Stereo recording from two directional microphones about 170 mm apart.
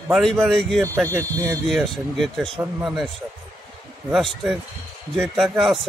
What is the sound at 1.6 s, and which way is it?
A man's voice, centre (ahead or behind).